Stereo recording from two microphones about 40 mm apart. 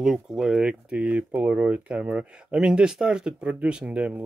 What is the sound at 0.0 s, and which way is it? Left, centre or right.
Speech, centre.